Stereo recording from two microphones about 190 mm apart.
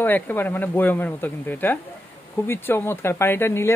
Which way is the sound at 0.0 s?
10° left (ahead or behind).